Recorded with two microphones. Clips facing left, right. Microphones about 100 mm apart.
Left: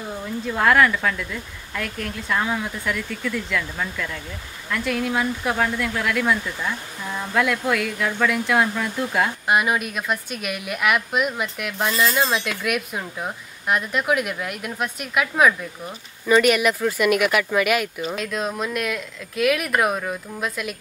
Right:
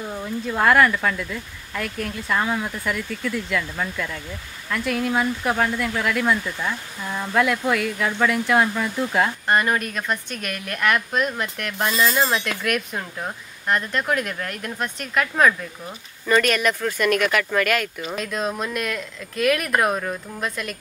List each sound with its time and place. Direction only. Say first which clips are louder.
0.1 s speech: left 1 dB; 5° right (ahead or behind)